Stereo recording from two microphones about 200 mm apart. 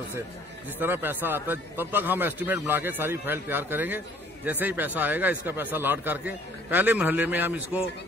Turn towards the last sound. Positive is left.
turn(degrees=-10)  # may be behind; listen again after turning